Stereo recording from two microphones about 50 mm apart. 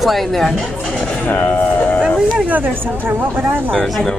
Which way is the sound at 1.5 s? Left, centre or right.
Left.